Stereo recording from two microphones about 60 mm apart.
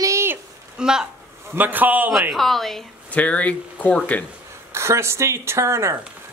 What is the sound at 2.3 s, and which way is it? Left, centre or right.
Speech, centre.